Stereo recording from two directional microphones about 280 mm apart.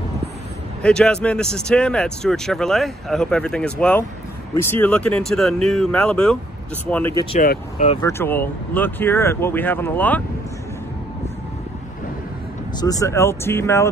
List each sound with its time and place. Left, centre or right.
0.8 s speech: centre
7.3 s speech: left
8.0 s speech: centre
12.8 s speech: centre